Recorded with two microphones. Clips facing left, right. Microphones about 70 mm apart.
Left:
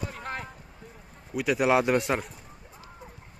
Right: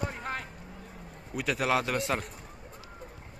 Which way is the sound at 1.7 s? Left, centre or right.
Left.